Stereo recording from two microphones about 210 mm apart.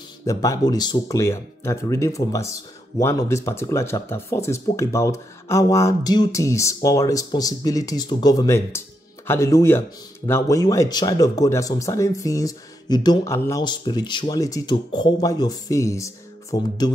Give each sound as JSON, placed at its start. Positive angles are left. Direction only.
{"t": 0.2, "sound": "speech", "side_deg": 15}